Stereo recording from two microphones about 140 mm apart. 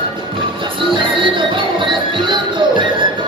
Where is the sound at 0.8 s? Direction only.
35° right (ahead or behind).